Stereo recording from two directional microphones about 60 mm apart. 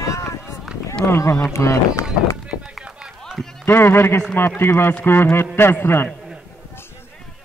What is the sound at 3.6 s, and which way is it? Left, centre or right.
Speech, left.